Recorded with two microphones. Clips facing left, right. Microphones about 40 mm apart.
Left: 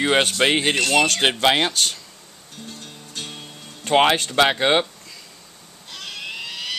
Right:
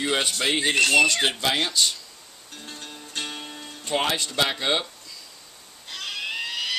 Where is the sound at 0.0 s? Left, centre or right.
Left.